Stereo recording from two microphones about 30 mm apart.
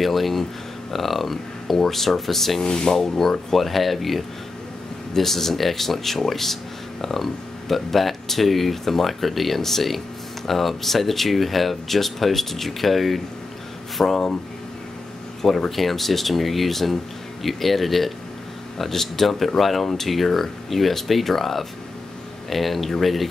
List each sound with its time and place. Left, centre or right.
0.0 s speech: centre
2.6 s speech: left
3.0 s speech: centre
15.7 s speech: centre